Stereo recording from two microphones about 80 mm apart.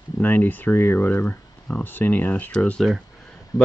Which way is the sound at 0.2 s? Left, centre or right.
Left.